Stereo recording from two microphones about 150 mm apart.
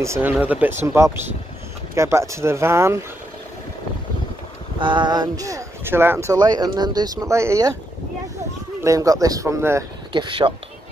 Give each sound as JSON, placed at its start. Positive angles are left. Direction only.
{"t": 0.0, "sound": "speech", "side_deg": -15}
{"t": 4.7, "sound": "speech", "side_deg": -35}
{"t": 8.8, "sound": "speech", "side_deg": -20}
{"t": 10.1, "sound": "speech", "side_deg": -35}